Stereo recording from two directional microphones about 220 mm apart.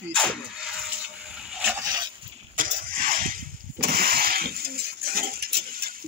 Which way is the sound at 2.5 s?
40° right (ahead or behind).